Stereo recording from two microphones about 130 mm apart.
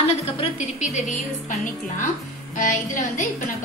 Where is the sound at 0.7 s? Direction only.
70° left (ahead or behind).